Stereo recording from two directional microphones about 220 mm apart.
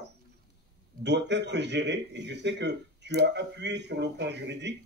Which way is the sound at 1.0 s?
50° right (ahead or behind).